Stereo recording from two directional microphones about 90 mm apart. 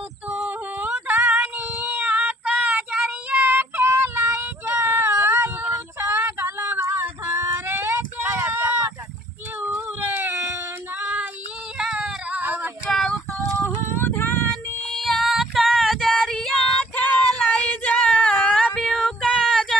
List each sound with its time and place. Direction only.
0.5 s female singing: 15° right (ahead or behind)
9.6 s a sound: 25° right (ahead or behind)
11.8 s female singing: 15° right (ahead or behind)
12.9 s female singing: 5° left (ahead or behind)
13.6 s female singing: 25° left (ahead or behind)
14.5 s child singing: 5° left (ahead or behind)
17.6 s female singing: 15° left (ahead or behind)